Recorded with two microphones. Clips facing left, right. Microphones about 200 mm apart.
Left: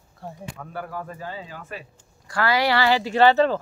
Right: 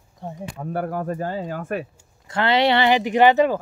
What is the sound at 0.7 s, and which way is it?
Speech, 50° right (ahead or behind).